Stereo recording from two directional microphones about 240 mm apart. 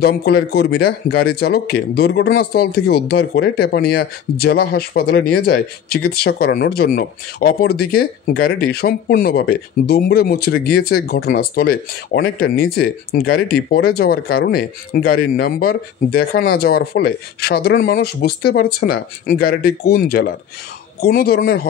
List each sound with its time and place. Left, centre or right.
0.0 s speech: left